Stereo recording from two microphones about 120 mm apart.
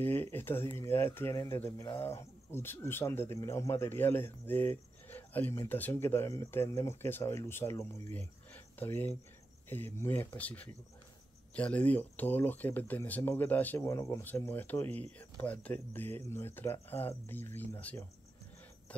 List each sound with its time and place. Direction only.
0.0 s speech: 15° left (ahead or behind)
13.8 s speech: 25° left (ahead or behind)